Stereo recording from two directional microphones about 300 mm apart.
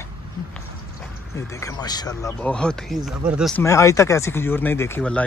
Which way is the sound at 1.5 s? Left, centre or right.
Centre.